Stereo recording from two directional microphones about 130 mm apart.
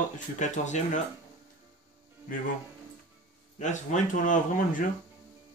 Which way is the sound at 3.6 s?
70° left (ahead or behind).